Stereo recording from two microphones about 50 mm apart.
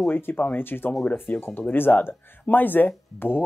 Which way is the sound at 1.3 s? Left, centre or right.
Left.